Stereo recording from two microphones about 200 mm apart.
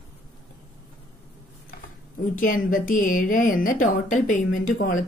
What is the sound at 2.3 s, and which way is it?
Speech, 40° left (ahead or behind).